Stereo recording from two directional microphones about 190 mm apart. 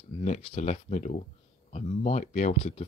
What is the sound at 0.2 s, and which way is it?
Speech, 35° left (ahead or behind).